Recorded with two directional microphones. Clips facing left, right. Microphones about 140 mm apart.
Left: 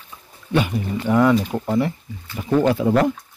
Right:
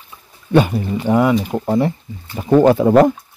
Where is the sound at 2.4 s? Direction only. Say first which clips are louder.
Right 6 dB; 40° right (ahead or behind).